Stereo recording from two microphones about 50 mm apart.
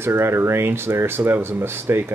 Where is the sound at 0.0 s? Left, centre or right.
Right.